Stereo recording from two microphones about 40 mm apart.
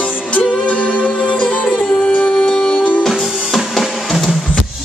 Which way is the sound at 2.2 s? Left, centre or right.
Left.